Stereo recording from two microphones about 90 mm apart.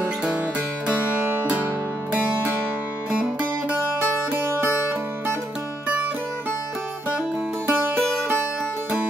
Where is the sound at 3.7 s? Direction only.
25° right (ahead or behind).